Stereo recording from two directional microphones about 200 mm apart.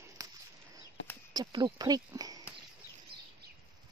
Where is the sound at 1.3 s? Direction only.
20° right (ahead or behind).